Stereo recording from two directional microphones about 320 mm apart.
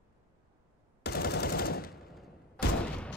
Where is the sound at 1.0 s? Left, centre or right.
Left.